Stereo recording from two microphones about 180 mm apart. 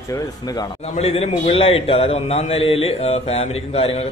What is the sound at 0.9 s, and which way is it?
A man's voice, 35° left (ahead or behind).